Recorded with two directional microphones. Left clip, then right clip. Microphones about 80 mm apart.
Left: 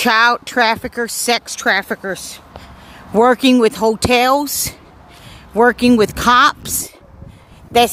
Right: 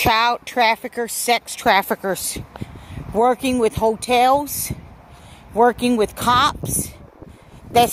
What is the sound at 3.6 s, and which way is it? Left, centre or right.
Speech, left.